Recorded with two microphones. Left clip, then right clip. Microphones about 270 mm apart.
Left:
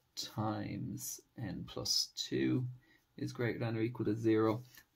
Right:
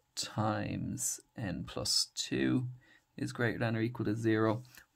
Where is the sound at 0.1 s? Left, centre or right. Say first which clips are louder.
Right 5 dB; right.